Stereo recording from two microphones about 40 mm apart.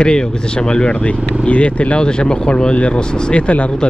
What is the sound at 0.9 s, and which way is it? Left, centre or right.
Speech, left.